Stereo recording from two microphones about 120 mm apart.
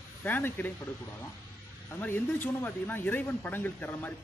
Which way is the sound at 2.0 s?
15° left (ahead or behind).